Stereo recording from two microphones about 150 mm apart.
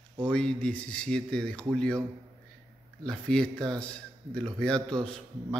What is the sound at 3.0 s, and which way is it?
A man's voice, 5° left (ahead or behind).